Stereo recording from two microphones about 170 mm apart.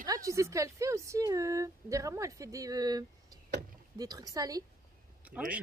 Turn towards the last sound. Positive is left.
turn(degrees=-10)  # may be behind; listen again after turning